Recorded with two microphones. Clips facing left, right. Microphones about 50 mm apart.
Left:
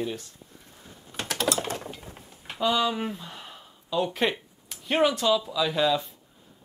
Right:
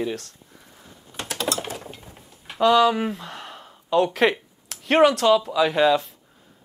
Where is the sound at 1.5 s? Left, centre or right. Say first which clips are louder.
Even; centre.